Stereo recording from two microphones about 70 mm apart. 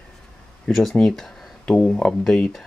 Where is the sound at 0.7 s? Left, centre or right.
Centre.